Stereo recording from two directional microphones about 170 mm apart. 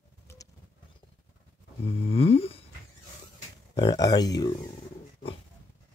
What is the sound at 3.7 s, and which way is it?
Speech, 25° left (ahead or behind).